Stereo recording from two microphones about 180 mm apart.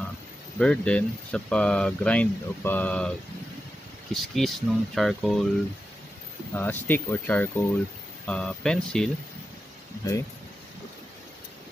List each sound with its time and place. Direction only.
0.6 s speech: 5° left (ahead or behind)
6.5 s speech: 10° left (ahead or behind)
10.0 s speech: 20° left (ahead or behind)